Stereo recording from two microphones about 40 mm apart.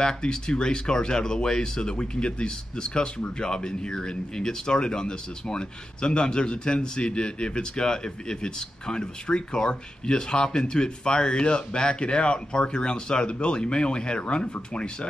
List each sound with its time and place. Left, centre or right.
0.0 s speech: centre